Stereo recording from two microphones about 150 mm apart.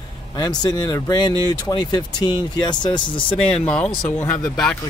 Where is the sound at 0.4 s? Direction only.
25° left (ahead or behind).